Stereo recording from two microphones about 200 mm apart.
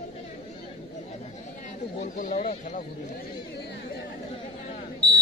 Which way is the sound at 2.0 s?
35° left (ahead or behind).